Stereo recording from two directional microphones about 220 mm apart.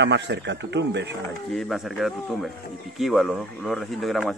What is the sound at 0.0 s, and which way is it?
Speech, 50° right (ahead or behind).